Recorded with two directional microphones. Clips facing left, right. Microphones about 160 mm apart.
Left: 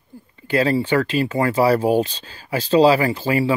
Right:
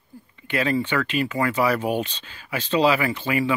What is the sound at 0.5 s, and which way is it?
Speech, 35° left (ahead or behind).